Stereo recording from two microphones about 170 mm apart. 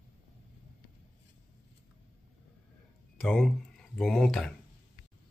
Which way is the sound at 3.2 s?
5° left (ahead or behind).